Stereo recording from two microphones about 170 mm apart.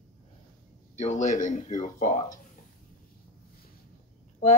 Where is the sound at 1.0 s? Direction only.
45° left (ahead or behind).